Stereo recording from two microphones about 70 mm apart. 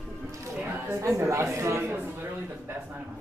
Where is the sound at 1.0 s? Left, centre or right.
Right.